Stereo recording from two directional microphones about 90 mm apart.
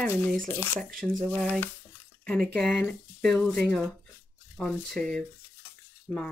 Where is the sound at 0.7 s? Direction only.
10° left (ahead or behind).